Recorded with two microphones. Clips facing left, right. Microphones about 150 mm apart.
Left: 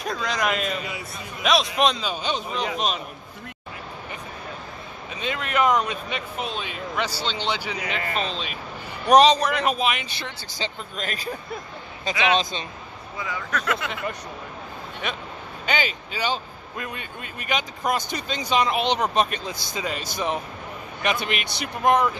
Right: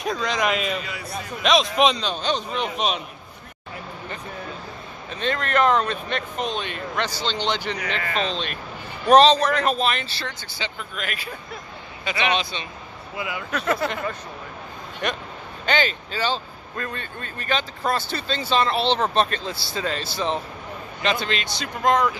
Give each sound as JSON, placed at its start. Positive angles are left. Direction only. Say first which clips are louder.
{"t": 0.0, "sound": "a man's voice", "louder": "right 2 dB", "side_deg": 0}
{"t": 5.1, "sound": "a man's voice", "louder": "right 3 dB", "side_deg": 10}
{"t": 10.5, "sound": "speech", "louder": "left 1 dB", "side_deg": 35}
{"t": 13.7, "sound": "speech", "louder": "right 7 dB", "side_deg": -35}
{"t": 15.0, "sound": "a man's voice", "louder": "right 5 dB", "side_deg": 5}